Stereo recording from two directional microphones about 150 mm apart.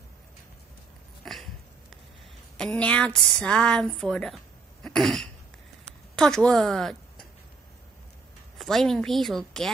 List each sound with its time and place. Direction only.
1.2 s dog: centre (ahead or behind)
2.5 s a woman's voice: 5° left (ahead or behind)
4.8 s throat clearing: centre (ahead or behind)
6.1 s a woman's voice: 5° left (ahead or behind)
8.5 s a woman's voice: centre (ahead or behind)